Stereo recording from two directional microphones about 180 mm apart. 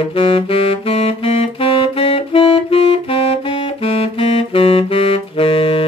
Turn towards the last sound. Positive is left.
turn(degrees=30)  # may be behind; listen again after turning